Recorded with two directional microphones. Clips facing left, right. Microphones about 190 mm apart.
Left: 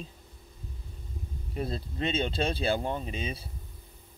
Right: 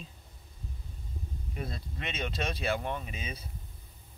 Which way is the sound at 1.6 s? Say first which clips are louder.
Left 8 dB; 30° left (ahead or behind).